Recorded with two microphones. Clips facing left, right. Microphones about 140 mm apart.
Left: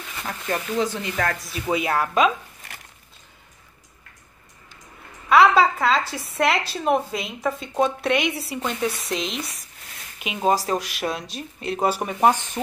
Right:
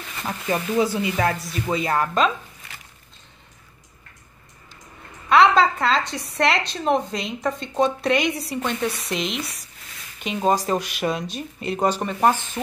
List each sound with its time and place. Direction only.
0.2 s speech: 10° right (ahead or behind); by 2.3 s 5° left (ahead or behind)
5.3 s a woman's voice: 5° left (ahead or behind)